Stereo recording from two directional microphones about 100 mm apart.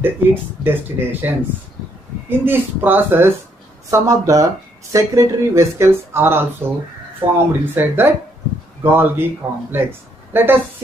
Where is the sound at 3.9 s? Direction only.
35° right (ahead or behind).